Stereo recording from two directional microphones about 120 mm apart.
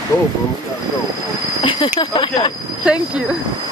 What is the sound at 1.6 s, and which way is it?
Speech, 40° left (ahead or behind).